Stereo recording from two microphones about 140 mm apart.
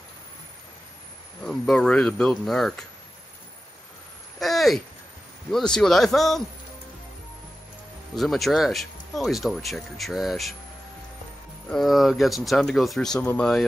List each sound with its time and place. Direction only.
1.4 s speech: 5° left (ahead or behind)
4.4 s a sound: centre (ahead or behind)
5.5 s speech: 5° left (ahead or behind)
8.2 s speech: centre (ahead or behind)
11.7 s speech: centre (ahead or behind)